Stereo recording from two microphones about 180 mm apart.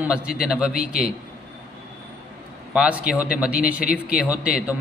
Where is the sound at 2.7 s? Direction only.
5° right (ahead or behind).